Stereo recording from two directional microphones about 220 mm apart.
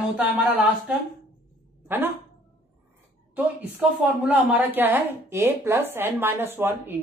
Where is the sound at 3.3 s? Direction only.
5° right (ahead or behind).